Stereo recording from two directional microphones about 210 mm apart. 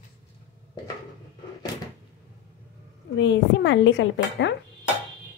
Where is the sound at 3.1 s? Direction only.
60° left (ahead or behind).